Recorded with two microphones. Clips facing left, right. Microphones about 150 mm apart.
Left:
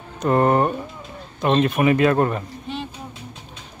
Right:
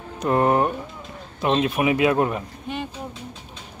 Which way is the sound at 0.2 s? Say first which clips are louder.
Left 2 dB; centre (ahead or behind).